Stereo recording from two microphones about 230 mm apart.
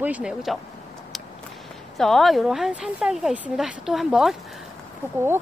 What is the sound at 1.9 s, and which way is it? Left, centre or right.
Speech, centre.